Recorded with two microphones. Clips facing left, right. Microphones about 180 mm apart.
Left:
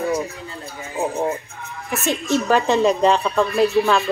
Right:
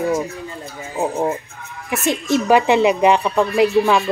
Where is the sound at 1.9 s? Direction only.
10° right (ahead or behind).